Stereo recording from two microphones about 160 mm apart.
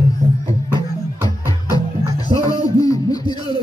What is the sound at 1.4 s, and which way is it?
Music, 20° left (ahead or behind).